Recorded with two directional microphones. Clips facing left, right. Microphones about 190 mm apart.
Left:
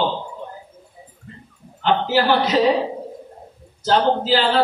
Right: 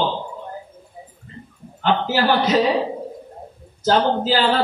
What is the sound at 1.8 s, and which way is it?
Speech, 45° right (ahead or behind).